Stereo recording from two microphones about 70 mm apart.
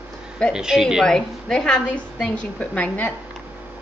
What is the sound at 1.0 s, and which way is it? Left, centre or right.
A woman's voice, centre.